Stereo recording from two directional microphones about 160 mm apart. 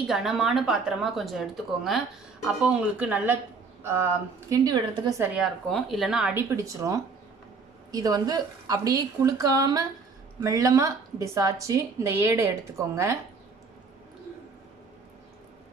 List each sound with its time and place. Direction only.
0.0 s a woman's voice: centre (ahead or behind); by 5.2 s 25° right (ahead or behind)
5.2 s a woman's voice: 5° right (ahead or behind)
6.5 s a woman's voice: 20° right (ahead or behind)